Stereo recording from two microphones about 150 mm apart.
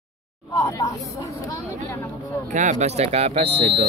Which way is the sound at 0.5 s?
20° left (ahead or behind).